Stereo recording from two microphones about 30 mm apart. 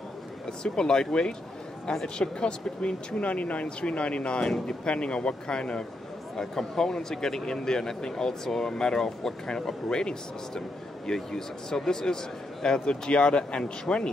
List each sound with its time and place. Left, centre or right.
0.7 s speech: left
3.2 s speech: left
3.6 s speech: left
6.3 s speech: centre
11.1 s speech: centre
13.1 s speech: left